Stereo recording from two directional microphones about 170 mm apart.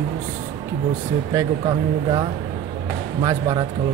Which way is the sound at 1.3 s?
25° right (ahead or behind).